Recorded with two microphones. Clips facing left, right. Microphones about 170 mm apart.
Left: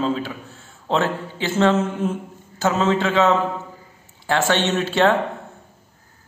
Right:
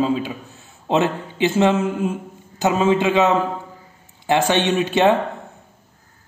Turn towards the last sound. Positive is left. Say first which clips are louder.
# right 2 dB
turn(degrees=-15)  # may be behind; listen again after turning